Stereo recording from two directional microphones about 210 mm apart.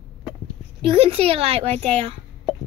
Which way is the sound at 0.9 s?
25° right (ahead or behind).